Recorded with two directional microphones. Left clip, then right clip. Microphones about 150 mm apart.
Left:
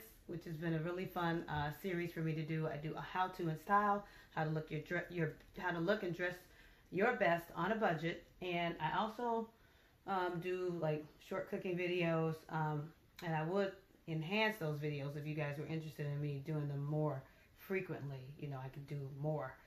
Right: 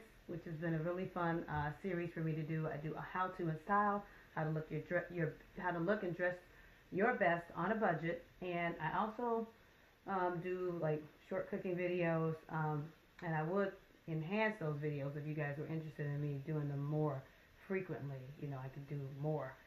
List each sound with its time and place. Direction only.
0.6 s speech: 30° left (ahead or behind)